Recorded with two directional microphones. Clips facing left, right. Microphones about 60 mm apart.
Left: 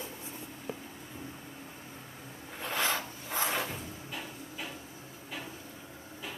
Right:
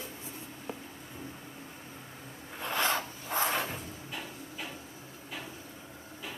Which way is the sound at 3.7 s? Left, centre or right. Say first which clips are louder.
Even; centre.